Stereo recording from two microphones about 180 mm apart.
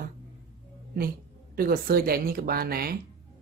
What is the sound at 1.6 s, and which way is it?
Speech, 55° right (ahead or behind).